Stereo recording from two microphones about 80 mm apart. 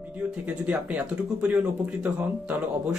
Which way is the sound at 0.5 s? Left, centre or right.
Centre.